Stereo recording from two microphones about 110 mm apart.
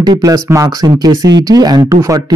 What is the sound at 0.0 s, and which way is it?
Speech, 40° right (ahead or behind).